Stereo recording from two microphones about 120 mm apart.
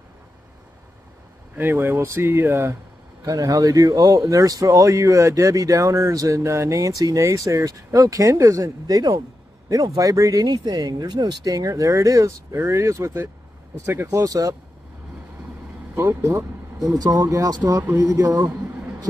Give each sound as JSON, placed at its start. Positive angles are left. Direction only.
{"t": 1.6, "sound": "speech", "side_deg": -15}
{"t": 3.3, "sound": "speech", "side_deg": -30}
{"t": 15.9, "sound": "speech", "side_deg": -20}
{"t": 17.8, "sound": "a man's voice", "side_deg": -15}